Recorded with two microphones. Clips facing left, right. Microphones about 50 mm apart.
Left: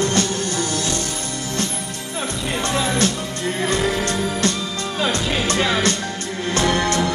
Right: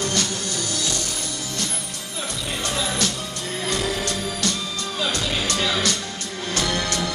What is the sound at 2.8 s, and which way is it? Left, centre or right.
Music, left.